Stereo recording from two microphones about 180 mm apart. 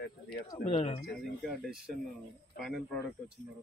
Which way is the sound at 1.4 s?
Centre (ahead or behind).